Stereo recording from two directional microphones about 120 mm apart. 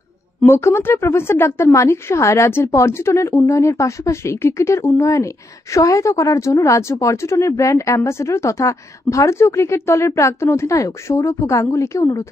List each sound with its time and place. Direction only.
0.5 s speech: 25° left (ahead or behind)